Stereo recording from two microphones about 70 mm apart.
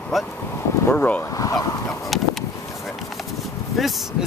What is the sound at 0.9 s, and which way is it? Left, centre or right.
Speech, centre.